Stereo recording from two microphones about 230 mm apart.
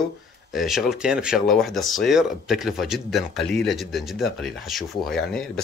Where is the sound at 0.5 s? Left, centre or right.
Centre.